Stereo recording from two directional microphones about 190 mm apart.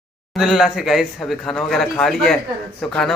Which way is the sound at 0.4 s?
Centre (ahead or behind).